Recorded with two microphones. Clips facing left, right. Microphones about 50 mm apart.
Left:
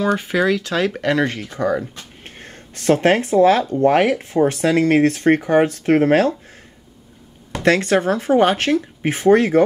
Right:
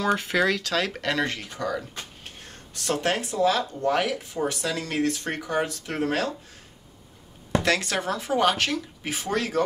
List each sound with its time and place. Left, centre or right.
0.2 s speech: centre
2.2 s speech: left
7.6 s speech: left